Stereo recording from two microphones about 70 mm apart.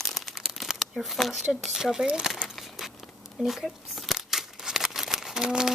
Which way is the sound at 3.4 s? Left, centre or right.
Centre.